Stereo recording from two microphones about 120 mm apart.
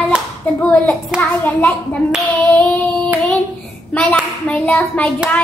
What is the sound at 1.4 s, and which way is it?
Speech, 15° left (ahead or behind).